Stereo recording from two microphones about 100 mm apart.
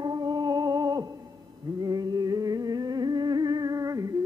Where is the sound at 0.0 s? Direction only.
45° right (ahead or behind).